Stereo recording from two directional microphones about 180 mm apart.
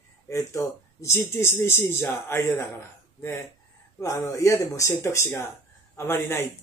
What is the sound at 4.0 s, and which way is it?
Speech, 20° left (ahead or behind).